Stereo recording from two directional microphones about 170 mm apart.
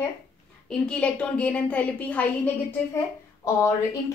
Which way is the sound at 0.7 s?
5° left (ahead or behind).